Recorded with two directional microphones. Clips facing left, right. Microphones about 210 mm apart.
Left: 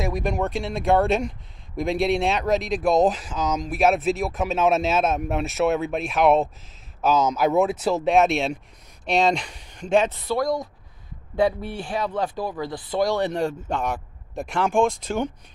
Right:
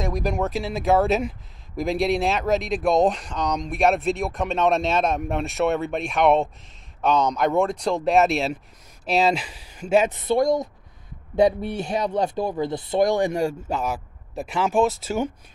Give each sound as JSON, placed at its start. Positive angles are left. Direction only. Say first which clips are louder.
{"t": 0.0, "sound": "speech", "louder": "even", "side_deg": 0}
{"t": 10.1, "sound": "speech", "louder": "right 4 dB", "side_deg": -20}